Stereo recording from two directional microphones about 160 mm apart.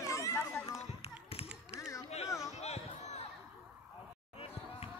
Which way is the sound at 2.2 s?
20° left (ahead or behind).